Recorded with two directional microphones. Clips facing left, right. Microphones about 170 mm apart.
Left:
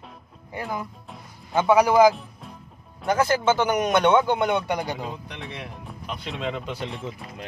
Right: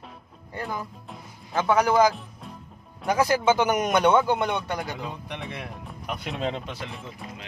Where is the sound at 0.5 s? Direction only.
5° left (ahead or behind).